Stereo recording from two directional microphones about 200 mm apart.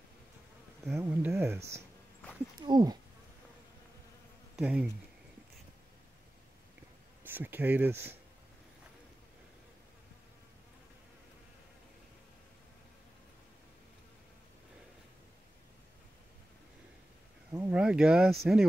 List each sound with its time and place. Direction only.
0.8 s speech: 10° right (ahead or behind)
4.6 s speech: 5° right (ahead or behind)
7.2 s speech: 10° right (ahead or behind)
17.5 s speech: 10° right (ahead or behind)